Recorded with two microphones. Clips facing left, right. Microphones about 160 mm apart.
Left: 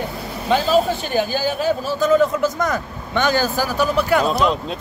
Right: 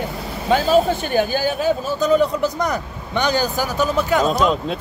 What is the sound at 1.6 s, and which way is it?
Speech, 15° right (ahead or behind).